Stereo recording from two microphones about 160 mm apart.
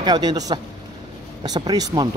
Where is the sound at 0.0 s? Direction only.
25° right (ahead or behind).